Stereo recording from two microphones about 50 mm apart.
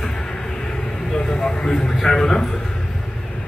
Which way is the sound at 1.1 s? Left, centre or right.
Centre.